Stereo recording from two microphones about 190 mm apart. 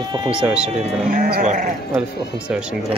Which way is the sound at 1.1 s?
50° right (ahead or behind).